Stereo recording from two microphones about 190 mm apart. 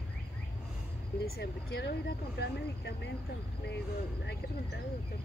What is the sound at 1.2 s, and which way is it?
Speech, 55° left (ahead or behind).